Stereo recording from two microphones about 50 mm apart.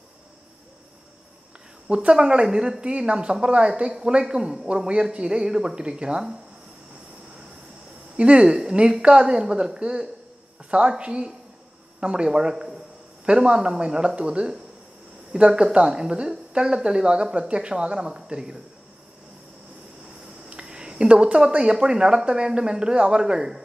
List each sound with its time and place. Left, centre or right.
1.9 s speech: centre
8.2 s a woman's voice: right
20.4 s speech: centre